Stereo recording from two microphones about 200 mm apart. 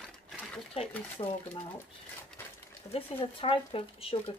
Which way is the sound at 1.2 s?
25° left (ahead or behind).